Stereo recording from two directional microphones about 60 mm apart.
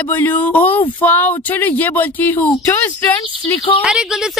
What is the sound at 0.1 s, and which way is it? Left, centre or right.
Speech, left.